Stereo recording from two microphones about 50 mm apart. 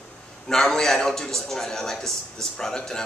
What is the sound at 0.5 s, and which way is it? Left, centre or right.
A man's voice, centre.